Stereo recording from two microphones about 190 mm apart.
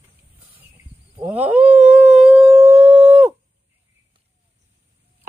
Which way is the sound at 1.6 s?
30° right (ahead or behind).